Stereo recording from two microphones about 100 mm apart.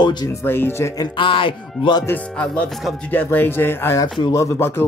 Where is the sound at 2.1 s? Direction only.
10° left (ahead or behind).